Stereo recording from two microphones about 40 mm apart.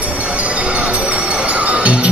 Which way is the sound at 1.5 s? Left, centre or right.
Right.